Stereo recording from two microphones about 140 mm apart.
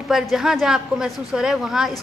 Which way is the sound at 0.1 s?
Centre (ahead or behind).